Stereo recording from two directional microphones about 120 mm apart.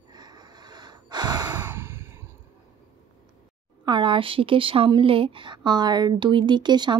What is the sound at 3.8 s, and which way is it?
Speech, 40° right (ahead or behind).